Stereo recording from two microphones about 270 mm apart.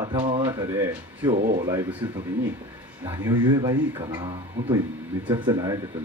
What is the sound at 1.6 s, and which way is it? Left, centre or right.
A man's voice, centre.